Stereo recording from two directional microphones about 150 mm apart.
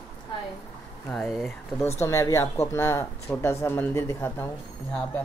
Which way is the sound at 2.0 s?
20° left (ahead or behind).